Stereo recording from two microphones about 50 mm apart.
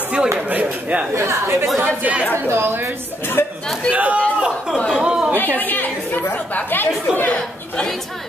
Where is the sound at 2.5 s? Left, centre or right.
Right.